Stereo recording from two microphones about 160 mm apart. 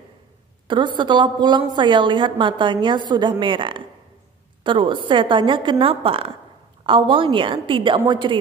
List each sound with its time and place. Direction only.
0.7 s a woman's voice: 30° right (ahead or behind)